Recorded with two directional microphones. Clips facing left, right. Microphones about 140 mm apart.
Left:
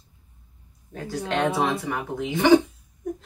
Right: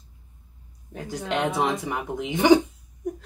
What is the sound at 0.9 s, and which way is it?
Speech, 15° right (ahead or behind).